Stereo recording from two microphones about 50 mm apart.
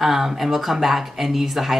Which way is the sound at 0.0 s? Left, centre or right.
Centre.